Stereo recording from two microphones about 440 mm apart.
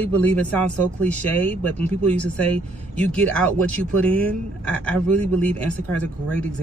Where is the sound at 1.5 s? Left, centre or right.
Right.